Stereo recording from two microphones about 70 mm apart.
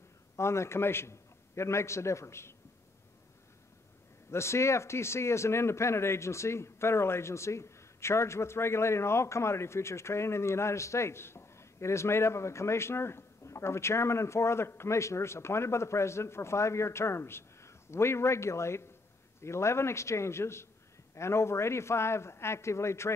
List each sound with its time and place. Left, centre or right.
0.4 s speech: left
4.3 s speech: left